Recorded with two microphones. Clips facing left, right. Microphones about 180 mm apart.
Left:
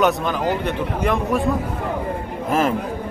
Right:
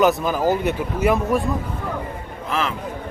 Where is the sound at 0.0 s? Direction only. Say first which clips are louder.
Right 1 dB; 5° right (ahead or behind).